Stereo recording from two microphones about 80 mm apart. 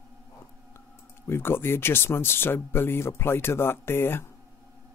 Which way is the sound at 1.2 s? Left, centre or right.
Left.